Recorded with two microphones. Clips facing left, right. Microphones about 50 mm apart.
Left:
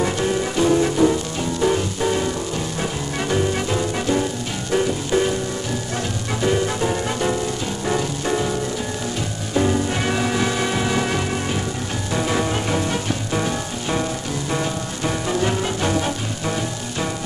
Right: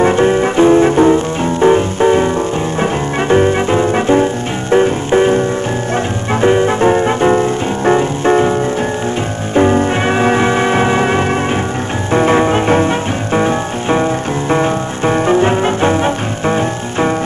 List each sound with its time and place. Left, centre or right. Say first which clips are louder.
0.0 s music: right 10 dB; right
6.4 s music: right 10 dB; right
9.6 s music: right 9 dB; right